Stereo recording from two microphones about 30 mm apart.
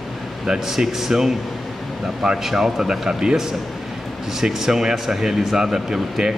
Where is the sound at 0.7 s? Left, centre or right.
Centre.